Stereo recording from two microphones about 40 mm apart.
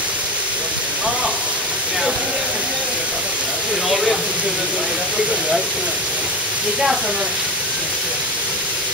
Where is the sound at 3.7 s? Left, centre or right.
Right.